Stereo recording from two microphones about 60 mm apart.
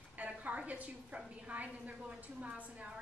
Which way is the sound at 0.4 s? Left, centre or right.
Right.